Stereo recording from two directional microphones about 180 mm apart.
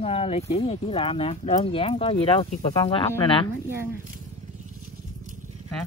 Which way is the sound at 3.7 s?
15° right (ahead or behind).